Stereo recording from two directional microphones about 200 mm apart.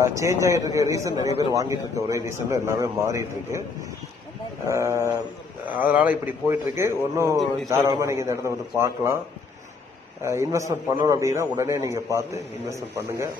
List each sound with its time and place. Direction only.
0.0 s a man's voice: 15° right (ahead or behind)
4.6 s a man's voice: 15° right (ahead or behind)
10.2 s a man's voice: 15° right (ahead or behind)